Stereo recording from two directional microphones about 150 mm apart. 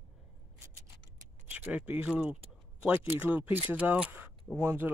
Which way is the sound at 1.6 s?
10° right (ahead or behind).